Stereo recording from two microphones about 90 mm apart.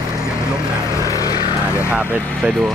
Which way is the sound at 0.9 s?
35° left (ahead or behind).